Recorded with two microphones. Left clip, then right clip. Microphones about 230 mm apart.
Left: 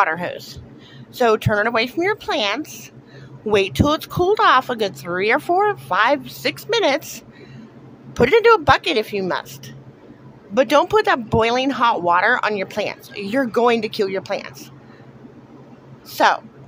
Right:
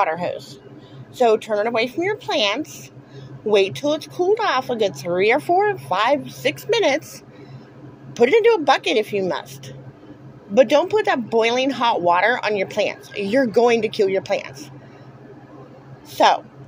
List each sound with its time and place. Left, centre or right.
0.0 s speech: centre
8.1 s speech: centre
16.2 s speech: centre